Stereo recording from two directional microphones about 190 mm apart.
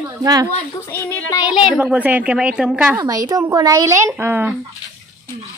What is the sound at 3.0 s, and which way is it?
Speech, 20° right (ahead or behind).